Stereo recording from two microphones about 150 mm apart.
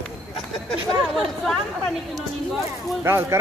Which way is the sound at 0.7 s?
Centre (ahead or behind).